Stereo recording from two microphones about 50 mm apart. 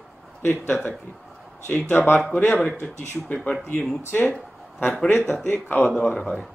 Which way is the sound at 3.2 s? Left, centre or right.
Left.